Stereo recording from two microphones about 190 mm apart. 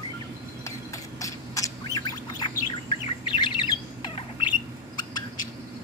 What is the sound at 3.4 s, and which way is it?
Squawk, 25° left (ahead or behind).